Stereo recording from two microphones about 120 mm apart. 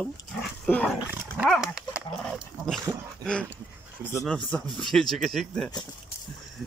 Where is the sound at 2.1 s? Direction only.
Centre (ahead or behind).